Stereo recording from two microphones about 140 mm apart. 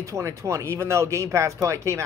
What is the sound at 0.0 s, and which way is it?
A man's voice, 20° right (ahead or behind).